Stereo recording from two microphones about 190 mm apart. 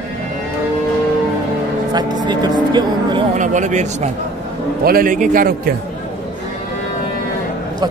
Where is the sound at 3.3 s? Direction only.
40° right (ahead or behind).